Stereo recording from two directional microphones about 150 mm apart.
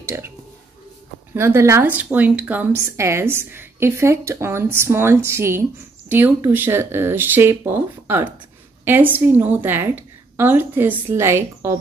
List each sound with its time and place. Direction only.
0.0 s speech: 15° right (ahead or behind)
1.3 s speech: 20° right (ahead or behind)